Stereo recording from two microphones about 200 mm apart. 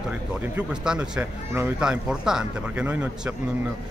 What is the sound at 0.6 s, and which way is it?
Speech, 5° right (ahead or behind).